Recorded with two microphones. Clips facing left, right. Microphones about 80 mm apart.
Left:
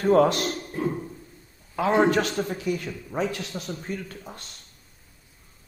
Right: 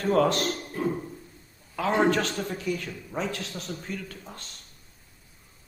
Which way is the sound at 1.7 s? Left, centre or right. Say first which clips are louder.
Left 3 dB; centre.